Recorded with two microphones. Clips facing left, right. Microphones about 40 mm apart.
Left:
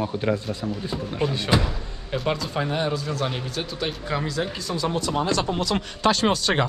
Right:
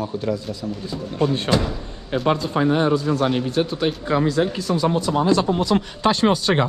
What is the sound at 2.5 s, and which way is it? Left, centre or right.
Speech, right.